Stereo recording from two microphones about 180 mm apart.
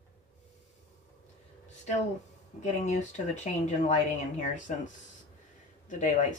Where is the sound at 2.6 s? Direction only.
40° left (ahead or behind).